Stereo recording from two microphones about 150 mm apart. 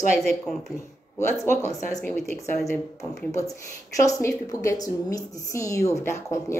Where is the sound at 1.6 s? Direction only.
20° left (ahead or behind).